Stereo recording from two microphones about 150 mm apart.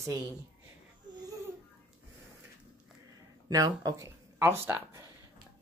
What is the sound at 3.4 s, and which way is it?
A woman's voice, 25° right (ahead or behind).